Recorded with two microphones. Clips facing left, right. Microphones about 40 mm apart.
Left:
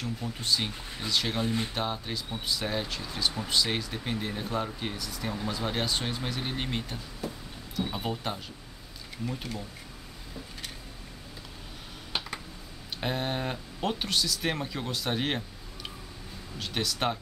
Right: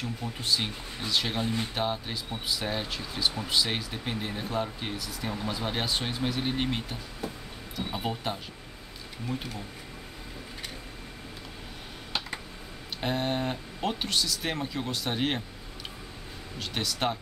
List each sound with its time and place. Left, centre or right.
0.0 s speech: centre
13.0 s speech: centre
16.5 s speech: centre